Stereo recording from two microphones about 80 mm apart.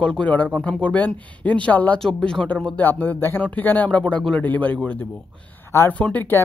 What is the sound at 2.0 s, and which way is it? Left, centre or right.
Speech, centre.